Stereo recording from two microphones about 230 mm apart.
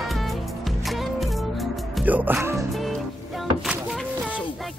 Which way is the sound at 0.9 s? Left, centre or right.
Centre.